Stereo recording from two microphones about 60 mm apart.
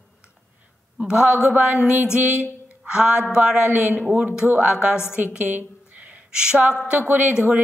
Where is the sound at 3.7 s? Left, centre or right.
Right.